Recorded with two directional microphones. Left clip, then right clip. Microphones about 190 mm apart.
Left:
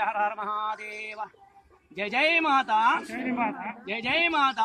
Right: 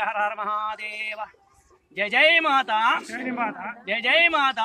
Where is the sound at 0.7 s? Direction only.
60° right (ahead or behind).